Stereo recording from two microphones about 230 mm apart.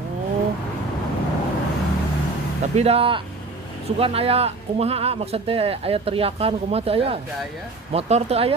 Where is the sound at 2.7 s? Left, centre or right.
Right.